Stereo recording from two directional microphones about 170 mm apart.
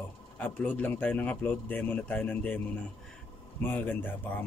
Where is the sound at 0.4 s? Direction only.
10° left (ahead or behind).